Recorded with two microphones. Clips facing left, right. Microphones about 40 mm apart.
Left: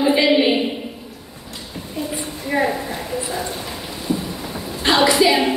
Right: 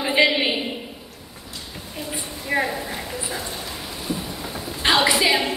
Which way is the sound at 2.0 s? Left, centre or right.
Centre.